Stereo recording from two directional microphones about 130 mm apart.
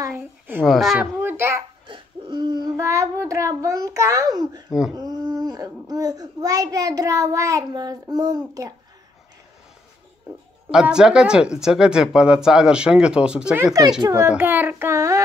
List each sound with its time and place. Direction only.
0.0 s a child's voice: 15° right (ahead or behind)
0.7 s speech: centre (ahead or behind)
0.9 s a child's voice: 15° right (ahead or behind)
1.9 s babbling: 40° right (ahead or behind); by 3.1 s 25° right (ahead or behind)
3.3 s a child's voice: 25° right (ahead or behind)
4.6 s speech: 5° right (ahead or behind)
4.9 s a child's voice: 30° right (ahead or behind)
10.7 s speech: 5° right (ahead or behind)
14.0 s a child's voice: 20° right (ahead or behind)